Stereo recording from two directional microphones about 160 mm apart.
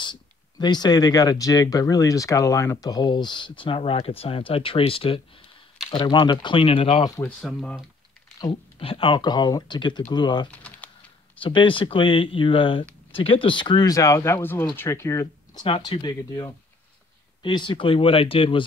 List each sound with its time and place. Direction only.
0.0 s speech: 30° left (ahead or behind)
7.2 s speech: 5° left (ahead or behind)
8.4 s speech: 30° left (ahead or behind)
10.5 s typing: 10° left (ahead or behind)
11.4 s speech: 30° left (ahead or behind)
15.6 s speech: 30° left (ahead or behind)